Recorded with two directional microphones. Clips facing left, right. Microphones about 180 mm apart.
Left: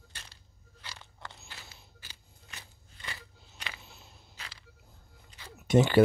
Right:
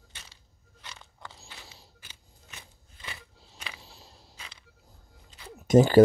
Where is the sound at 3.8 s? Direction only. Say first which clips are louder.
Right 2 dB; 30° right (ahead or behind).